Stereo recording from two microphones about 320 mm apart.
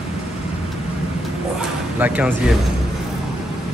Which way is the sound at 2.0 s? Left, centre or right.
Centre.